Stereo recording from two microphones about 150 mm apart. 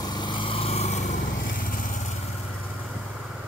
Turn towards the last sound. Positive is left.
turn(degrees=60)  # may be behind; listen again after turning